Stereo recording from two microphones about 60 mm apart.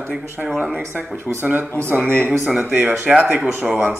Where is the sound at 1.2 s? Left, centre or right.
Right.